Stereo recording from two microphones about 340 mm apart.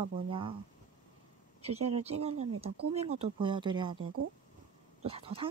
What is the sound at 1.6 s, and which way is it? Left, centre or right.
Speech, centre.